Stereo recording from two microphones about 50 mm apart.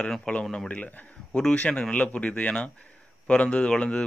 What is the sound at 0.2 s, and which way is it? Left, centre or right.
Speech, centre.